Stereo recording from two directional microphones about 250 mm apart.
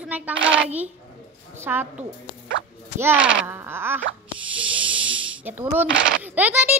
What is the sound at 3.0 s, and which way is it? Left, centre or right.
Speech, centre.